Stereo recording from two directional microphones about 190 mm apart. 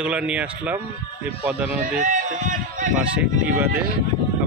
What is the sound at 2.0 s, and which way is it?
Speech, 45° right (ahead or behind).